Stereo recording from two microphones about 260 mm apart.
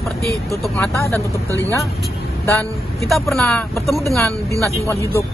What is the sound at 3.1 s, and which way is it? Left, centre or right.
Speech, centre.